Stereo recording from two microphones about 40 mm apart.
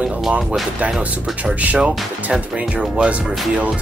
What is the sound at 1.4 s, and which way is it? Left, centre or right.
Speech, right.